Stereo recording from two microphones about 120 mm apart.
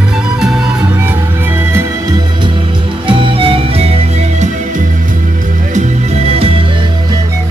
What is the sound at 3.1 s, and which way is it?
Music, 50° right (ahead or behind).